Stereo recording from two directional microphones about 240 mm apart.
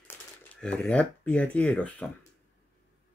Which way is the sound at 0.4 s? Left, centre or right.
Centre.